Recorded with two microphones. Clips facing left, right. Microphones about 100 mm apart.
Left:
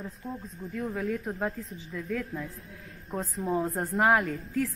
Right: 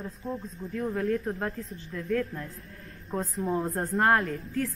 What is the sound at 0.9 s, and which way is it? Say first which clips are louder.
A woman's voice: right 4 dB; 5° left (ahead or behind).